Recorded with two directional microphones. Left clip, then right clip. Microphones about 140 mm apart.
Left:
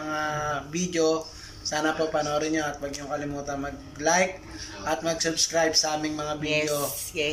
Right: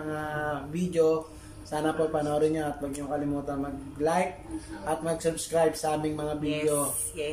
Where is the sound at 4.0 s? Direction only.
25° right (ahead or behind).